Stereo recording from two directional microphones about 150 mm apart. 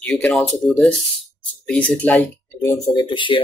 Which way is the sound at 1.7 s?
10° left (ahead or behind).